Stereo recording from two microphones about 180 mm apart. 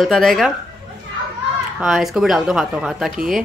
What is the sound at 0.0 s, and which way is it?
Speech, centre (ahead or behind).